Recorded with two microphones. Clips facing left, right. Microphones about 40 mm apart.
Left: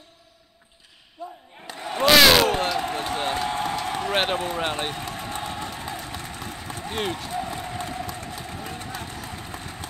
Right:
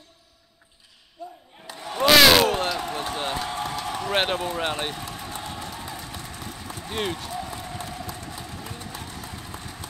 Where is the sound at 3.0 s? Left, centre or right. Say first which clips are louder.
Left 2 dB; centre.